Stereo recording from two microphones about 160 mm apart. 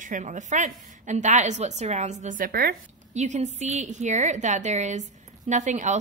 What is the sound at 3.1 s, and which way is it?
A woman's voice, 45° right (ahead or behind).